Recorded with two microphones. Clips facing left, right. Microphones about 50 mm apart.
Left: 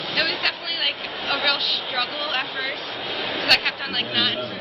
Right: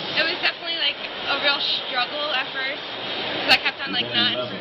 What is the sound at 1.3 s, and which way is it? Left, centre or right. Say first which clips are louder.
Speech: right 1 dB; centre.